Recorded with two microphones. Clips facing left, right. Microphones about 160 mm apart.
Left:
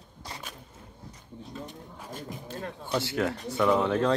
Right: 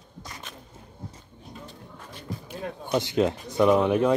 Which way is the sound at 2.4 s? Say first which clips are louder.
Right 4 dB; 15° right (ahead or behind).